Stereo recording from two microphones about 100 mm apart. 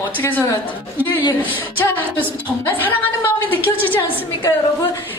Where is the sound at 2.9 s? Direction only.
20° left (ahead or behind).